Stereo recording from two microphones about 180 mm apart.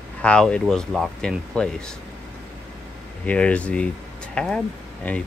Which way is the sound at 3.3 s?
5° left (ahead or behind).